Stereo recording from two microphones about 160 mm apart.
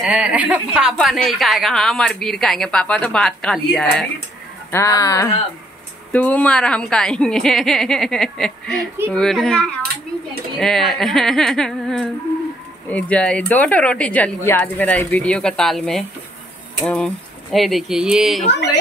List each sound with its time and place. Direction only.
0.0 s speech: 5° right (ahead or behind)
4.6 s speech: 20° left (ahead or behind)
6.1 s speech: 10° left (ahead or behind)